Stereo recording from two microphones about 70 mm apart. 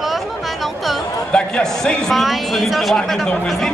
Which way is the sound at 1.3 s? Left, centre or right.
Centre.